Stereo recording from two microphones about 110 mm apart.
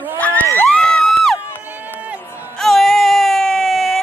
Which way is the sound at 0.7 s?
10° left (ahead or behind).